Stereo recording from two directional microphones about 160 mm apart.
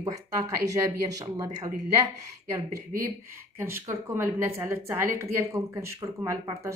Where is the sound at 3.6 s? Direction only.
15° right (ahead or behind).